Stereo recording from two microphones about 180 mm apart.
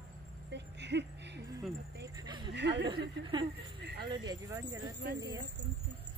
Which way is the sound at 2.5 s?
70° right (ahead or behind).